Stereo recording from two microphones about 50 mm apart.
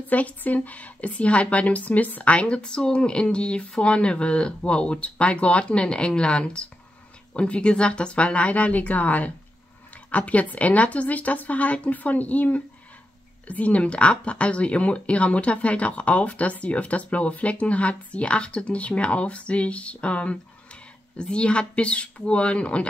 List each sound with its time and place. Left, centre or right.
0.1 s speech: left